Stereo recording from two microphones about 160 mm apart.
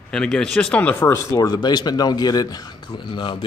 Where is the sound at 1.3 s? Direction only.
20° left (ahead or behind).